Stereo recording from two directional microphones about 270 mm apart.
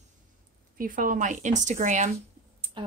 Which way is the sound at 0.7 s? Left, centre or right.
Right.